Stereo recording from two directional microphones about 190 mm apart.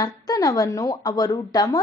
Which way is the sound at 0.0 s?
20° left (ahead or behind).